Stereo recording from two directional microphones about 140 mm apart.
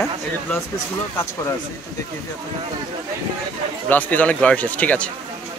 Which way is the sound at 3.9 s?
10° left (ahead or behind).